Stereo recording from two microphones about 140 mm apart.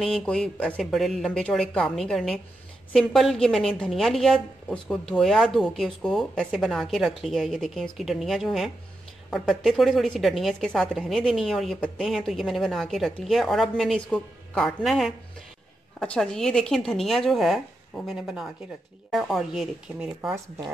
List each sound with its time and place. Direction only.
0.0 s a woman's voice: 5° left (ahead or behind)
20.2 s speech: 15° right (ahead or behind)